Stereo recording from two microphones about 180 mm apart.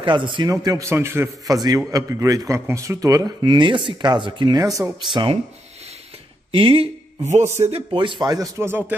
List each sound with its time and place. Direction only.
0.0 s speech: 25° right (ahead or behind)
6.5 s speech: 30° right (ahead or behind); by 8.9 s 10° right (ahead or behind)